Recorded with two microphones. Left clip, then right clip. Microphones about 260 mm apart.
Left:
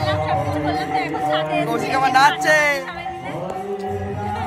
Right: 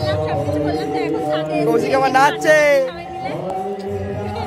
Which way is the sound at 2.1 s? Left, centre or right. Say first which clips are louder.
Even; centre.